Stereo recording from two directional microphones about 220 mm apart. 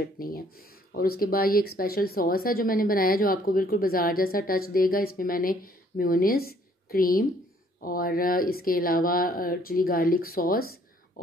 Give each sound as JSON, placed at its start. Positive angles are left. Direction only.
{"t": 0.2, "sound": "speech", "side_deg": 45}